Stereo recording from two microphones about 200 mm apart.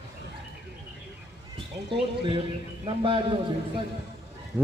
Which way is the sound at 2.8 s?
25° right (ahead or behind).